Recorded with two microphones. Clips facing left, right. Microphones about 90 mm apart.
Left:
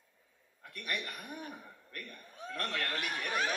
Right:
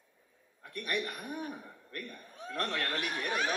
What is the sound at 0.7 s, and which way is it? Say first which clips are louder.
Speech: right 4 dB; 25° right (ahead or behind).